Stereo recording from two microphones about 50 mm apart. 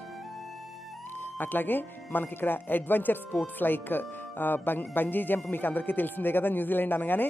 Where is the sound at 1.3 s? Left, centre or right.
Left.